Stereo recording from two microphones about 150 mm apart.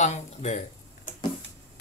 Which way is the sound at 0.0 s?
50° left (ahead or behind).